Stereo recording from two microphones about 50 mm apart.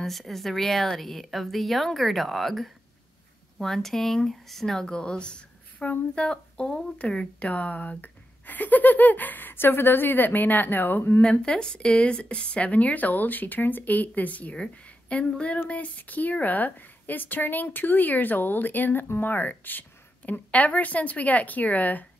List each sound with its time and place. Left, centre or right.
0.0 s a woman's voice: centre; by 11.1 s left
11.4 s speech: centre; by 22.0 s left